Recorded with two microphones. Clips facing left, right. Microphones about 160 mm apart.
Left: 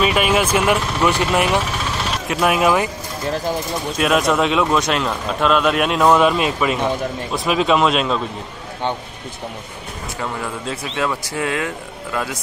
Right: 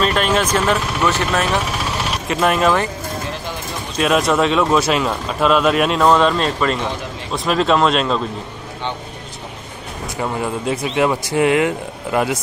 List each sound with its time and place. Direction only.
0.0 s speech: 10° left (ahead or behind)
2.2 s speech: 5° left (ahead or behind)
4.0 s speech: centre (ahead or behind)
10.2 s speech: 15° right (ahead or behind)